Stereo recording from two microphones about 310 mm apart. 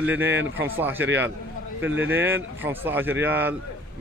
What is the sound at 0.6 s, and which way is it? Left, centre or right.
A man's voice, centre.